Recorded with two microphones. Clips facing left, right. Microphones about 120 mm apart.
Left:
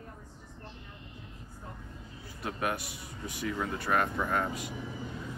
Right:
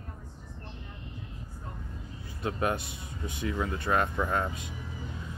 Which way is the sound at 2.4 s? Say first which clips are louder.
Right 3 dB; 25° right (ahead or behind).